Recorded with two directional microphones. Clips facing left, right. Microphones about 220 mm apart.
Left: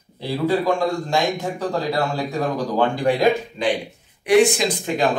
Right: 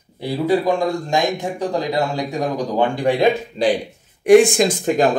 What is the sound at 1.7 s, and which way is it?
A man's voice, 15° right (ahead or behind).